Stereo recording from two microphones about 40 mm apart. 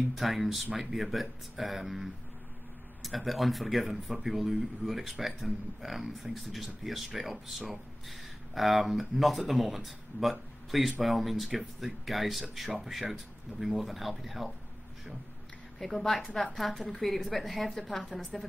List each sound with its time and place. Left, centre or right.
0.1 s speech: centre
15.8 s a woman's voice: centre